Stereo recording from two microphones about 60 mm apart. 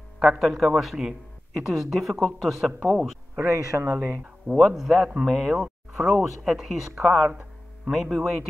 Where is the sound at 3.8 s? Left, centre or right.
Right.